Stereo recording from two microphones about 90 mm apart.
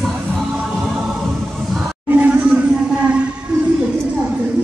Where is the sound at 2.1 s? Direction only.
20° right (ahead or behind).